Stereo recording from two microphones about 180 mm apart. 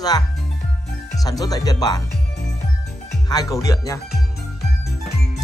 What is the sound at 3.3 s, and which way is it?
Speech, 20° left (ahead or behind).